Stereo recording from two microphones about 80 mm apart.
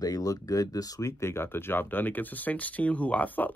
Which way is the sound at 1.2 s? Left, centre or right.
Left.